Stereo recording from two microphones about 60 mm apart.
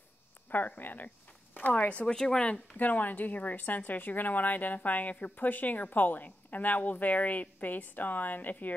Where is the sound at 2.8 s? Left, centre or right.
Left.